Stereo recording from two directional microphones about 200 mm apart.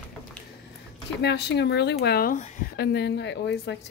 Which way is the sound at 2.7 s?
55° left (ahead or behind).